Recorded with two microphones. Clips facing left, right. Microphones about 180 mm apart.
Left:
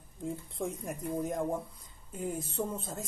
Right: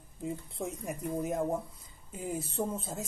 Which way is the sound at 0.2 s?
5° right (ahead or behind).